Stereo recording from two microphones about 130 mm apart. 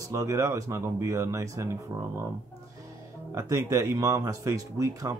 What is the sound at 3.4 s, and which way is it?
Speech, 25° right (ahead or behind).